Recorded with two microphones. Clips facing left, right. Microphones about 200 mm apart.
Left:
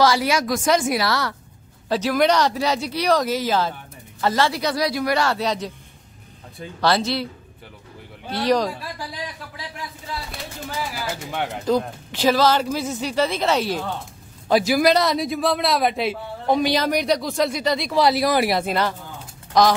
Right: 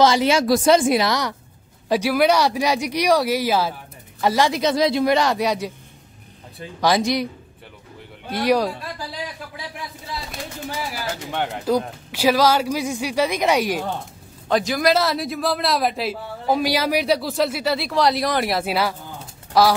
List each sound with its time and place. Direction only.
0.0 s a woman's voice: 20° right (ahead or behind)
6.8 s speech: 15° right (ahead or behind)
8.3 s speech: 10° right (ahead or behind)
11.3 s a man's voice: centre (ahead or behind)
11.7 s speech: 10° right (ahead or behind)
14.5 s a man's voice: 10° left (ahead or behind)
18.6 s a man's voice: 10° right (ahead or behind)